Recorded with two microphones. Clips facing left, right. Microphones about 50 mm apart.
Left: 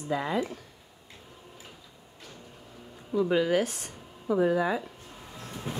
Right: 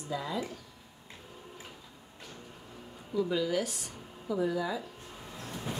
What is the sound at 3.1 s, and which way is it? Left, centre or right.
Speech, left.